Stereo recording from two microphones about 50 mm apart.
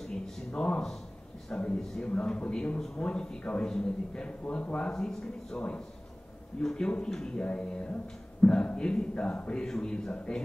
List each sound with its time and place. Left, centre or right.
0.0 s a sound: centre
1.8 s speech: centre
7.4 s speech: left